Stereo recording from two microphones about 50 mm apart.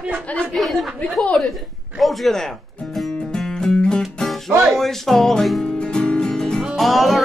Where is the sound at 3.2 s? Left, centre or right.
Centre.